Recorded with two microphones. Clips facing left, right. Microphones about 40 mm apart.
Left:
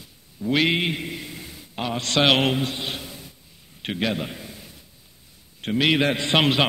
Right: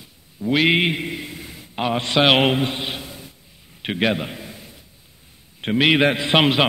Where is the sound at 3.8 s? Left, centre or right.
Right.